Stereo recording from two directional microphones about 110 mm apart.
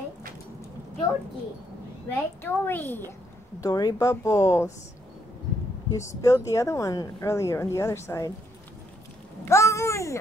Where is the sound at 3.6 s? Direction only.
35° left (ahead or behind).